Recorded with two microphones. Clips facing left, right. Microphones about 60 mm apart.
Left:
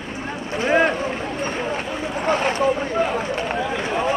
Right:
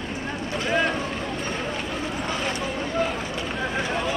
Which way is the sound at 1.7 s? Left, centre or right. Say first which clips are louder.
Left 3 dB; left.